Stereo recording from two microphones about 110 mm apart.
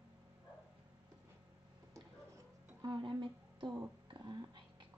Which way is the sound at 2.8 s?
40° right (ahead or behind).